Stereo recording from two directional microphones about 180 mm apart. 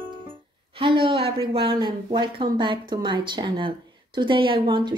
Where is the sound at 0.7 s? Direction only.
30° right (ahead or behind).